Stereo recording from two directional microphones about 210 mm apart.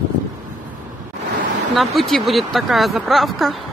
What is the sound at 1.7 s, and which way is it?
Speech, centre (ahead or behind).